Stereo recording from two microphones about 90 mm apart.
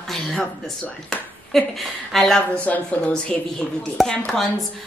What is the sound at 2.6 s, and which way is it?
Speech, 15° left (ahead or behind).